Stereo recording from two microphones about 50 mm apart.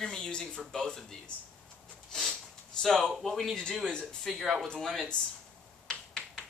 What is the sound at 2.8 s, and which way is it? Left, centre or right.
A man's voice, centre.